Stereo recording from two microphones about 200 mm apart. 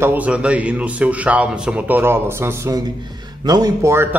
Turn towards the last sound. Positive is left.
turn(degrees=-10)  # may be behind; listen again after turning